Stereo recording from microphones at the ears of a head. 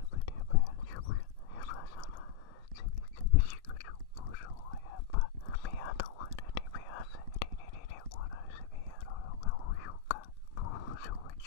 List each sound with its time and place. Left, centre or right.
0.1 s whispering: left